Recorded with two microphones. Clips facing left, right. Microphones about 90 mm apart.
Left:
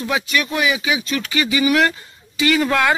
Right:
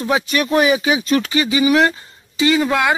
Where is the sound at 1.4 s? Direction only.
25° right (ahead or behind).